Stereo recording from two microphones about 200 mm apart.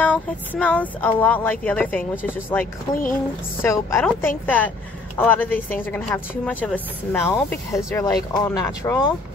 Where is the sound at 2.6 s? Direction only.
45° left (ahead or behind).